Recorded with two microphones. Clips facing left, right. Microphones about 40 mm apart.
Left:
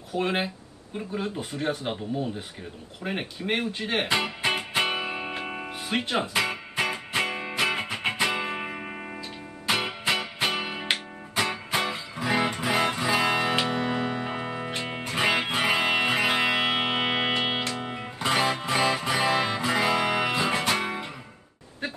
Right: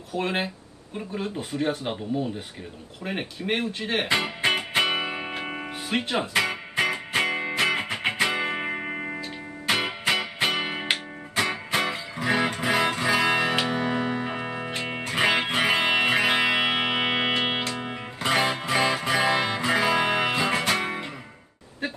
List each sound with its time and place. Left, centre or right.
0.1 s speech: centre
4.6 s music: centre
10.9 s music: centre
13.2 s music: right
19.5 s music: centre